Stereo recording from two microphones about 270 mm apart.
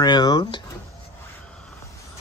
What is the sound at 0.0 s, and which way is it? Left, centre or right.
Speech, centre.